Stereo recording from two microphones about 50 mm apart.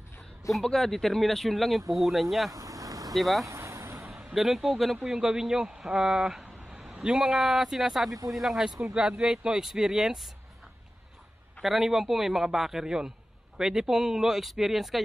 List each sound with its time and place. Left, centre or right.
0.5 s speech: centre
2.5 s vehicle: right
3.2 s speech: centre
3.4 s vehicle: right
4.1 s speech: centre
8.9 s speech: centre
11.6 s speech: centre